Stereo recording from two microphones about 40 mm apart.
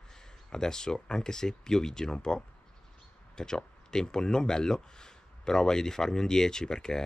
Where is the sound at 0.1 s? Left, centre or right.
Centre.